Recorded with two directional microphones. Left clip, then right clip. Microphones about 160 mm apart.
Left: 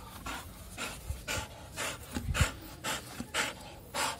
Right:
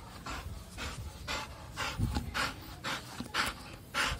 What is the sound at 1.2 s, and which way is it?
Pant, 25° left (ahead or behind).